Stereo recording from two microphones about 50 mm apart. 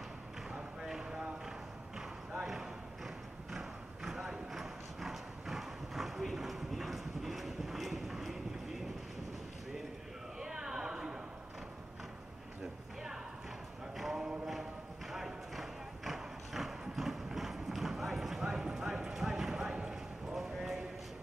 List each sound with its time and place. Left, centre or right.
0.8 s a sound: centre
2.4 s a sound: centre
3.5 s clip-clop: centre
10.4 s a sound: centre
13.9 s clip-clop: centre
14.2 s music: centre
14.5 s clip-clop: centre
19.7 s clip-clop: centre
20.3 s clip-clop: centre